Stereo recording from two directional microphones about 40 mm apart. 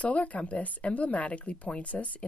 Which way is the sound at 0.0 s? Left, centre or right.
Left.